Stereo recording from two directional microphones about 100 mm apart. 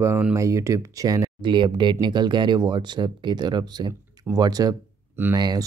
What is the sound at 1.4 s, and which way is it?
Speech, 55° right (ahead or behind).